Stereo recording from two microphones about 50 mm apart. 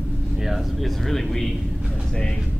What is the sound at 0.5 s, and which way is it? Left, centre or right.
Speech, centre.